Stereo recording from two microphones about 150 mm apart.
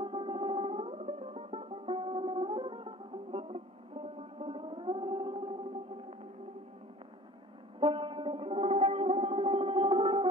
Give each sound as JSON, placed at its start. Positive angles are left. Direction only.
{"t": 0.0, "sound": "music", "side_deg": -35}
{"t": 7.8, "sound": "music", "side_deg": -35}